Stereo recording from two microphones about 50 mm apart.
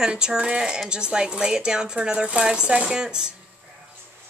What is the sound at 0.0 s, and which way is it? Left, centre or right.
Speech, centre.